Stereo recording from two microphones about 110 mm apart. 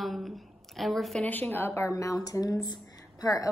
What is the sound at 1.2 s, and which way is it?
Speech, 15° left (ahead or behind).